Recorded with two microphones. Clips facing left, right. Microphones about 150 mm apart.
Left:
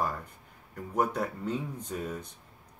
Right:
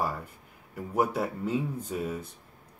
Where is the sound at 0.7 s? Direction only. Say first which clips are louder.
Right 2 dB; 5° right (ahead or behind).